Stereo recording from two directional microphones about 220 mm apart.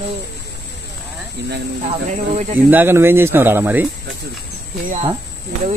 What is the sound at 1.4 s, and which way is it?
Speech, 50° right (ahead or behind).